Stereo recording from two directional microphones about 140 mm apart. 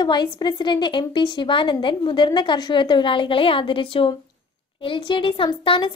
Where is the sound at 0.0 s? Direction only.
30° left (ahead or behind).